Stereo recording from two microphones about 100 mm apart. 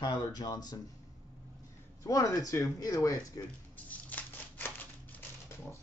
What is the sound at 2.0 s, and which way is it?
A woman's voice, 35° left (ahead or behind).